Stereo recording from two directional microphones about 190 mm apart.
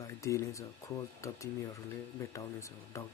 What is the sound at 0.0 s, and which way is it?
Speech, 15° left (ahead or behind).